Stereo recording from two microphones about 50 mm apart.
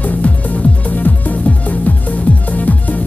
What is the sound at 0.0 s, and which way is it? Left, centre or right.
Music, left.